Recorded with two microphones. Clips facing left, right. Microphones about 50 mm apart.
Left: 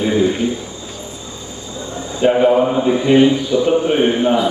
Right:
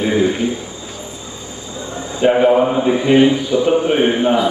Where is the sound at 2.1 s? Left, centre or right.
Centre.